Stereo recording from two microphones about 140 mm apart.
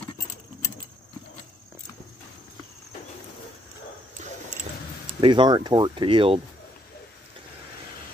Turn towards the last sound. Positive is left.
turn(degrees=-40)  # may be behind; listen again after turning